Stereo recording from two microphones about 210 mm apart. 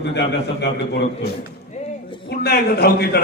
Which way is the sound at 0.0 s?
55° left (ahead or behind).